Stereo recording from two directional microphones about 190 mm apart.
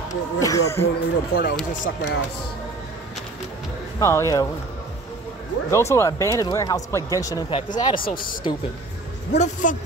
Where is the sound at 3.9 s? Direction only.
15° left (ahead or behind).